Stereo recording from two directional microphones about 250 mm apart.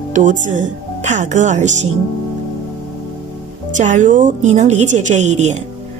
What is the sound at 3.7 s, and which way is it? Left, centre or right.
A woman's voice, right.